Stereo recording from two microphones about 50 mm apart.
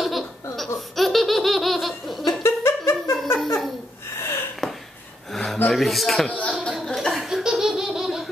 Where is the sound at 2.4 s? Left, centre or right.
Left.